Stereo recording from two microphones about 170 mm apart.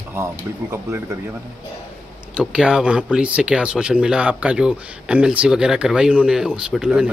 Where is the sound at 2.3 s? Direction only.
5° right (ahead or behind).